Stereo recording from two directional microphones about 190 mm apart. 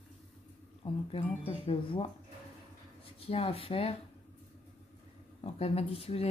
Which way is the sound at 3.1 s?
30° left (ahead or behind).